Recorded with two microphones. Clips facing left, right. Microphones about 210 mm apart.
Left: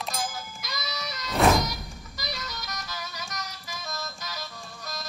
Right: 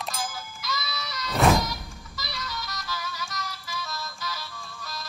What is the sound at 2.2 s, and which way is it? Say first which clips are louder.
Music: even; 40° left (ahead or behind).